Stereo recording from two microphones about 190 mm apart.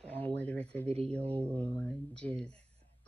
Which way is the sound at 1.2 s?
30° right (ahead or behind).